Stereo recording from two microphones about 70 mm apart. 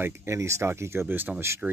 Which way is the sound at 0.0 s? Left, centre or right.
Right.